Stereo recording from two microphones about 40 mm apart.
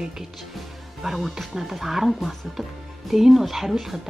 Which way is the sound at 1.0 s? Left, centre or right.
Centre.